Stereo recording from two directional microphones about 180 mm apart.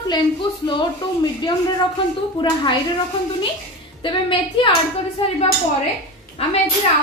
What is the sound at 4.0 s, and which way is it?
Speech, 25° left (ahead or behind).